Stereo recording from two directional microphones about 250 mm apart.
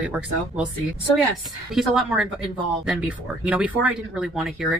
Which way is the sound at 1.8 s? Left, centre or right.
Centre.